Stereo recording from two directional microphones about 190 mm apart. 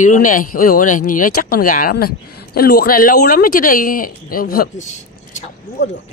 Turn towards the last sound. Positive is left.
turn(degrees=40)  # may be behind; listen again after turning